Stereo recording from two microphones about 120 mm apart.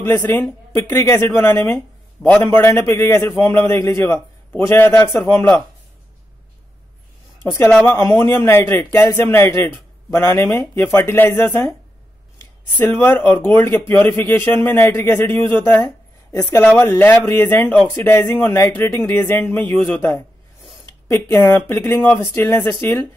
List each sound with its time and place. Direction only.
0.0 s a man's voice: 20° left (ahead or behind)
7.8 s a man's voice: 25° left (ahead or behind)
13.0 s a man's voice: 20° left (ahead or behind)
15.5 s a sound: 20° left (ahead or behind)
16.4 s a man's voice: 20° left (ahead or behind)